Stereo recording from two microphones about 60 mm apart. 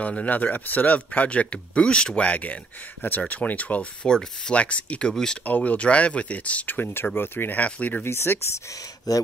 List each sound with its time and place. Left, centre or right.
0.0 s speech: left
4.0 s speech: centre
5.1 s speech: centre
5.4 s speech: left
8.0 s speech: left
9.1 s speech: left